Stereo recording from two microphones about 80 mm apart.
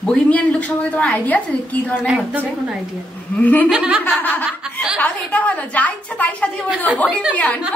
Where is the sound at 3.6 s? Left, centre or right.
Centre.